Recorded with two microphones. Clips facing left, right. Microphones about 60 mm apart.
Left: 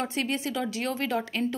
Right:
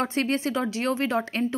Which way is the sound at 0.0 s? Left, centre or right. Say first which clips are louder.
Right 4 dB; right.